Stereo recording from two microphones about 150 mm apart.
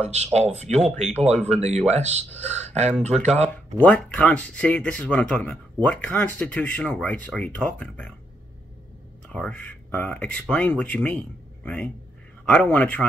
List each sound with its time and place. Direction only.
0.0 s speech: 50° right (ahead or behind)
3.4 s speech: 10° left (ahead or behind)
9.3 s speech: 10° left (ahead or behind)